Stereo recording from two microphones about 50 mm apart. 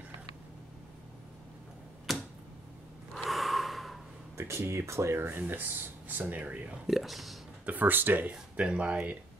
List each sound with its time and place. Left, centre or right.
2.1 s tick-tock: centre
3.1 s gasp: centre
4.4 s speech: right
5.5 s speech: right
6.9 s speech: centre
7.6 s speech: right
8.3 s speech: right